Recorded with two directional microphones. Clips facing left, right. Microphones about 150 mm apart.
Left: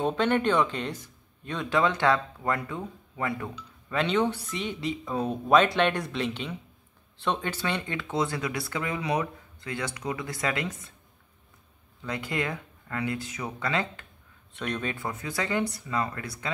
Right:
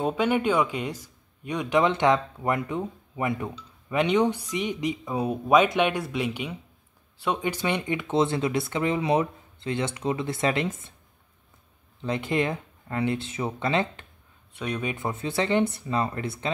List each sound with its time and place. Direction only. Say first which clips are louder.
0.0 s speech: right 1 dB; 10° right (ahead or behind)
12.0 s speech: right 5 dB; 20° right (ahead or behind)
14.5 s speech: right 2 dB; 10° right (ahead or behind)
15.0 s speech: right 8 dB; 25° right (ahead or behind)